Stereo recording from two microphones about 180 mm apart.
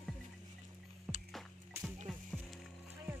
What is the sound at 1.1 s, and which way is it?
Music, centre (ahead or behind).